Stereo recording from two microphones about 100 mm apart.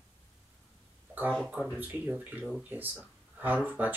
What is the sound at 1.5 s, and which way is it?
Speech, 15° right (ahead or behind).